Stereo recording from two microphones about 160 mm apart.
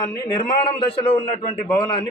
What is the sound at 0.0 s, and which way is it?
Speech, 25° left (ahead or behind).